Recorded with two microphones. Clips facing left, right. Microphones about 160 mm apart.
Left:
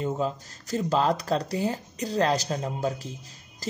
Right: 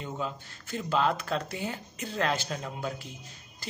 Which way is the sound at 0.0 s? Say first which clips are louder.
Left 7 dB; 40° left (ahead or behind).